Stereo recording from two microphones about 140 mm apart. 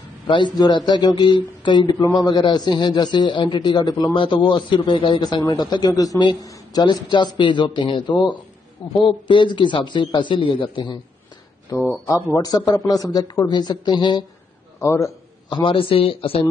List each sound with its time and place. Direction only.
0.3 s a man's voice: 35° left (ahead or behind)
12.1 s a man's voice: 25° left (ahead or behind)
14.8 s a man's voice: 20° left (ahead or behind)
15.5 s a man's voice: 40° left (ahead or behind)